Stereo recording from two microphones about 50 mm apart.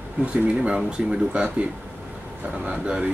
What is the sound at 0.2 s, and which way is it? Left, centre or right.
Speech, right.